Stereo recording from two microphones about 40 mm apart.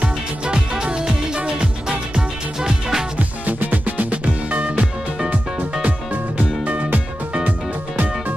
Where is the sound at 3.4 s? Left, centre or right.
Right.